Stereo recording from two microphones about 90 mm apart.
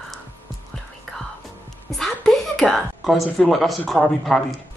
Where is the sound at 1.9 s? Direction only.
5° left (ahead or behind).